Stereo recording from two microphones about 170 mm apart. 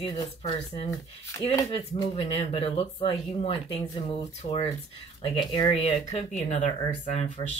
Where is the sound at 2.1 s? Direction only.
35° left (ahead or behind).